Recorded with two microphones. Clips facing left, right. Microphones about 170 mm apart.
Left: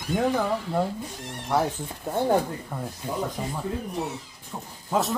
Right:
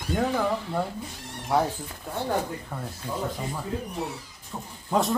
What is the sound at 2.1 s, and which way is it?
Speech, 45° left (ahead or behind).